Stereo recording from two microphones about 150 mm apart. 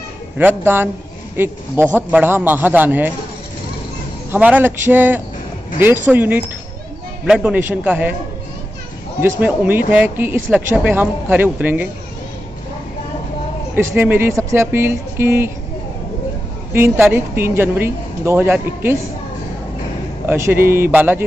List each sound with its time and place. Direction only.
0.4 s a woman's voice: 15° right (ahead or behind)
4.3 s a woman's voice: 10° right (ahead or behind)
9.4 s a woman's voice: 10° right (ahead or behind)
13.7 s a woman's voice: 15° right (ahead or behind)
16.7 s a woman's voice: 15° right (ahead or behind)
20.2 s a woman's voice: 15° right (ahead or behind)